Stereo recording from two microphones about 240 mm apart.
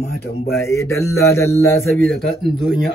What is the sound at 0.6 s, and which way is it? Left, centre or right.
Speech, centre.